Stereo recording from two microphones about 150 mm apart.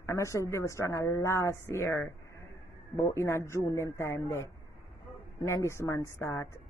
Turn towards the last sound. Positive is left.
turn(degrees=15)  # may be behind; listen again after turning